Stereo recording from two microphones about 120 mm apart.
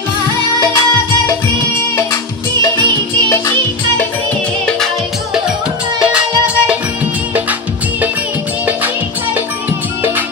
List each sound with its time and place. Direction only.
0.6 s music: 30° left (ahead or behind)
3.3 s music: 20° left (ahead or behind)
6.4 s music: 10° right (ahead or behind)